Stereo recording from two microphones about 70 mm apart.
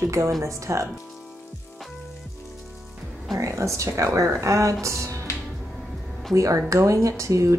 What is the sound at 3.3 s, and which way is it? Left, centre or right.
Speech, right.